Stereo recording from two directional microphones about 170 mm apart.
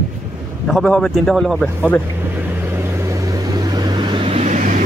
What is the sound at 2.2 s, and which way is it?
Vehicle, 10° right (ahead or behind).